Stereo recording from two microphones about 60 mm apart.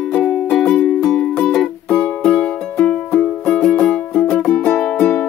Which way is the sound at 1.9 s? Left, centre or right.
Centre.